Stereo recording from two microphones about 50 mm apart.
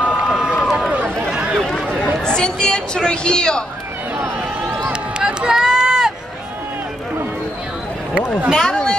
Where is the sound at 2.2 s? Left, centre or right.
Centre.